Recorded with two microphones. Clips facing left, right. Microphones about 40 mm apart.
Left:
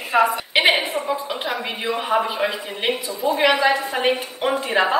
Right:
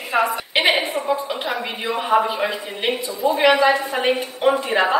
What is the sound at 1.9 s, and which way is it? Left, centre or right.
Speech, right.